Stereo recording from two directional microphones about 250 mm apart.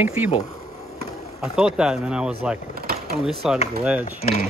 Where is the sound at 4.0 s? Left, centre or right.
Left.